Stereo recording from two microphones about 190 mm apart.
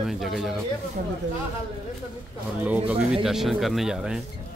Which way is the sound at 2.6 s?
5° right (ahead or behind).